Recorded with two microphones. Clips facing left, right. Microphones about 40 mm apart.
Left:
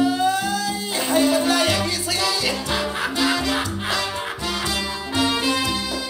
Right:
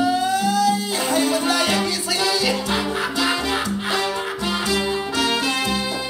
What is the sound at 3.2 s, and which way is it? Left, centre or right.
Music, right.